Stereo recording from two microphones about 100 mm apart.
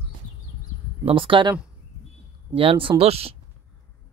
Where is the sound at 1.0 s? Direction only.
60° right (ahead or behind).